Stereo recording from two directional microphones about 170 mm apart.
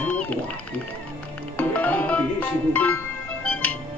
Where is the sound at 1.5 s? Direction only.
10° left (ahead or behind).